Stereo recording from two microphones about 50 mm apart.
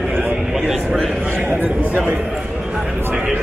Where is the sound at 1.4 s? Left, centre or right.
Right.